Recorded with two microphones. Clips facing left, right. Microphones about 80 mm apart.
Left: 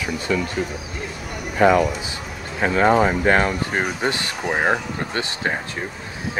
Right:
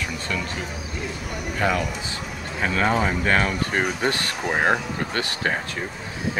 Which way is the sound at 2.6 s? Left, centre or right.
Left.